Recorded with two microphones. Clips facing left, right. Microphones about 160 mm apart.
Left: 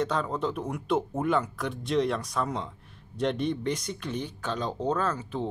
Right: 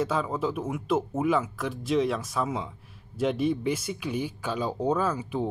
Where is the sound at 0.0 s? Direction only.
5° right (ahead or behind).